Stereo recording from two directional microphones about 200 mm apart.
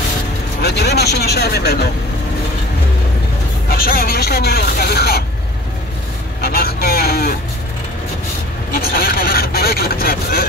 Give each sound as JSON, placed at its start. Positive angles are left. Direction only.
{"t": 0.6, "sound": "speech", "side_deg": 55}
{"t": 3.7, "sound": "speech", "side_deg": 50}
{"t": 6.4, "sound": "speech", "side_deg": 50}
{"t": 8.9, "sound": "speech", "side_deg": 45}